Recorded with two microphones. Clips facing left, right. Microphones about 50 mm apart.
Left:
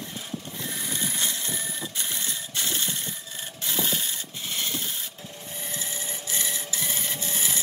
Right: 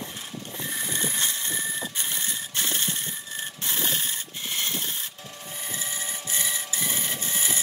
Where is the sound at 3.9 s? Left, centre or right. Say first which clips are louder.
Even; right.